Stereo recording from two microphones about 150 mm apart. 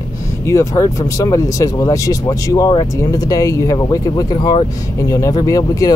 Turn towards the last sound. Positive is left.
turn(degrees=25)  # may be behind; listen again after turning